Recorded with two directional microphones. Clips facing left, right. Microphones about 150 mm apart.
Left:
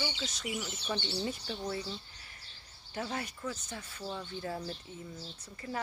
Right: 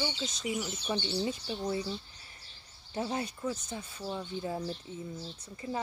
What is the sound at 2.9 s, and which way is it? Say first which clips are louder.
Speech: right 4 dB; 25° right (ahead or behind).